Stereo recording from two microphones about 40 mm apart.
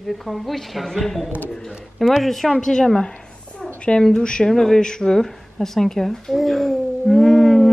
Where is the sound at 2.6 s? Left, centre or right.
Centre.